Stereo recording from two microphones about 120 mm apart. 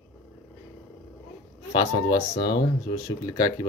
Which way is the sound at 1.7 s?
35° left (ahead or behind).